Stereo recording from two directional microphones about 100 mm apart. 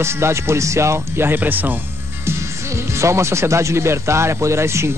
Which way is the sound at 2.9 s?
30° right (ahead or behind).